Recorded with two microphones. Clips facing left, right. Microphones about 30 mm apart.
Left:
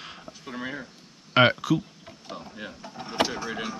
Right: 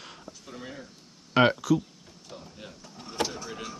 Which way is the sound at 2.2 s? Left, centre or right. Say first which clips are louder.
Left 6 dB; left.